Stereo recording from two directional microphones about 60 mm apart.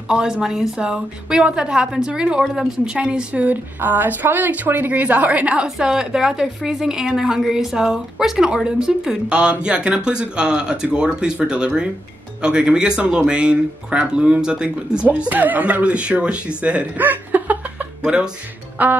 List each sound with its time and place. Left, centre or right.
0.1 s a woman's voice: centre
5.8 s speech: centre
15.0 s a woman's voice: right
18.0 s speech: centre
18.8 s a woman's voice: right